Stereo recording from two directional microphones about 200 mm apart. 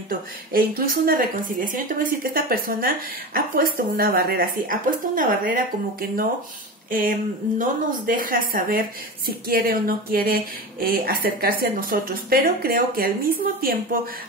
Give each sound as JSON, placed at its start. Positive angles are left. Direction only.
{"t": 0.1, "sound": "speech", "side_deg": -45}